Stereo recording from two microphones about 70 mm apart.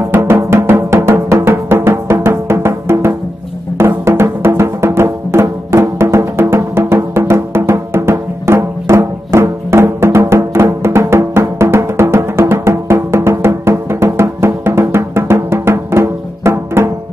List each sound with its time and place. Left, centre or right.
0.0 s music: right